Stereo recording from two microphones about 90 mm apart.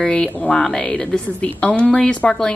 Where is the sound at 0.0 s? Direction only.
10° left (ahead or behind).